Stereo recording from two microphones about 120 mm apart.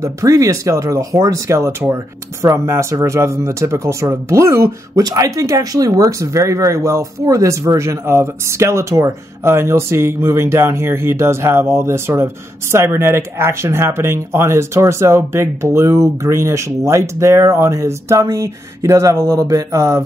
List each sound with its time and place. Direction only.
0.0 s speech: 30° right (ahead or behind)